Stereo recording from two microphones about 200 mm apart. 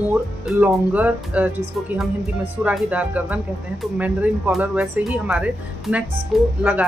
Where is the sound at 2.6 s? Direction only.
5° right (ahead or behind).